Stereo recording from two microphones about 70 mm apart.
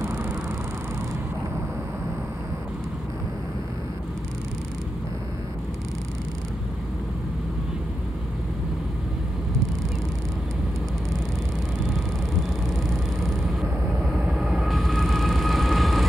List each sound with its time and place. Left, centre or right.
0.0 s vehicle: right
14.4 s train: centre